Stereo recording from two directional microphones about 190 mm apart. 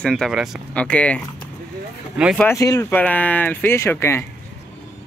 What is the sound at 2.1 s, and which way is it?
Speech, 5° right (ahead or behind).